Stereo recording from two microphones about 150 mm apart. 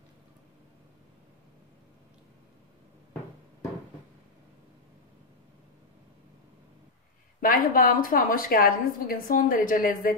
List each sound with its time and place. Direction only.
7.3 s a woman's voice: 65° left (ahead or behind)